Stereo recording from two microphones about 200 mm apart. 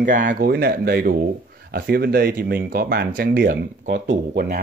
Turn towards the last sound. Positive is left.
turn(degrees=-45)  # may be behind; listen again after turning